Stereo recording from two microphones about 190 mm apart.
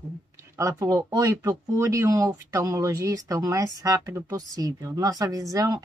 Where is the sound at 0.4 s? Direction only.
15° right (ahead or behind).